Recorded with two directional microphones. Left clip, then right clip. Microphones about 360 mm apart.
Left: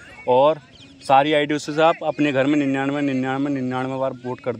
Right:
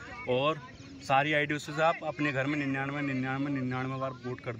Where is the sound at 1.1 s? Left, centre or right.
Centre.